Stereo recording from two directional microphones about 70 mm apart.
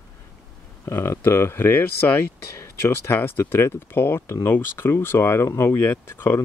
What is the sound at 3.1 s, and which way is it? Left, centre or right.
Speech, left.